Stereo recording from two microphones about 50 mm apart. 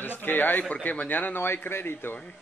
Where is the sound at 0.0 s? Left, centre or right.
Left.